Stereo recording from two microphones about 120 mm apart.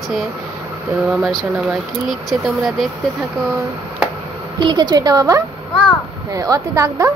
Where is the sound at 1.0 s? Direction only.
5° right (ahead or behind).